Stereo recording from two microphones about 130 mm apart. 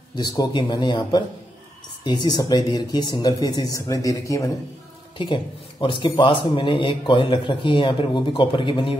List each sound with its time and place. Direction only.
0.1 s speech: 35° left (ahead or behind)
5.1 s speech: 40° left (ahead or behind)